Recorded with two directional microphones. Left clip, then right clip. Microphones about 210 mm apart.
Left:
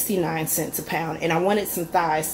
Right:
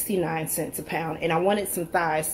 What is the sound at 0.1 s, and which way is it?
A woman's voice, 5° right (ahead or behind).